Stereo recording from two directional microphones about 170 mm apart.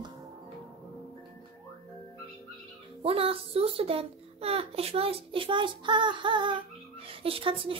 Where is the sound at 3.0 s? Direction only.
35° right (ahead or behind).